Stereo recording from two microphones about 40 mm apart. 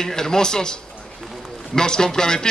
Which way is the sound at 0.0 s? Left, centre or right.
Centre.